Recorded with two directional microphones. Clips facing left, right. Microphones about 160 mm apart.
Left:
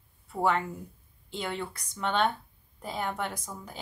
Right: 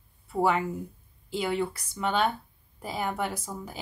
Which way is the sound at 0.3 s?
5° right (ahead or behind).